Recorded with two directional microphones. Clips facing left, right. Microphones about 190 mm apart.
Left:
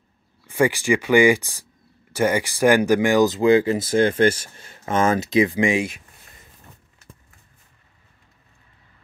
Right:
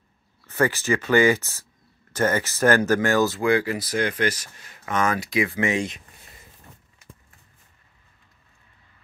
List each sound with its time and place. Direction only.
0.5 s speech: 15° left (ahead or behind)